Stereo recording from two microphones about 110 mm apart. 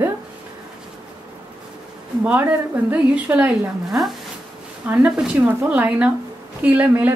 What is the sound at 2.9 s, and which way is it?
Speech, 15° right (ahead or behind).